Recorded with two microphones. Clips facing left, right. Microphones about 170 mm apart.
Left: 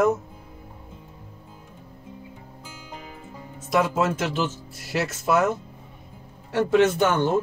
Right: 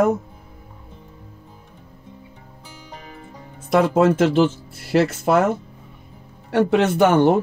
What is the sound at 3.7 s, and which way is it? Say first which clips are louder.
Speech: right 6 dB; 60° right (ahead or behind).